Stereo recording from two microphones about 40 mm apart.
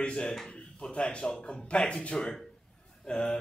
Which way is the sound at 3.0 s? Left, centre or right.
Centre.